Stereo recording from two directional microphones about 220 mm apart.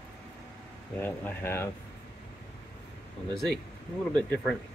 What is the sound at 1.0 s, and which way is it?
Speech, 10° left (ahead or behind).